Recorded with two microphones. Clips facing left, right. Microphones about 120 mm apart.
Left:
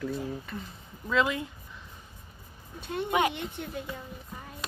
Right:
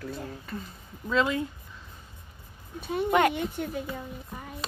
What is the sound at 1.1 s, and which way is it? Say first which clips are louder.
Speech: right 1 dB; 30° right (ahead or behind).